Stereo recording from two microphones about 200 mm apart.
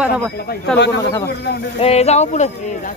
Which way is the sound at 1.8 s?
30° left (ahead or behind).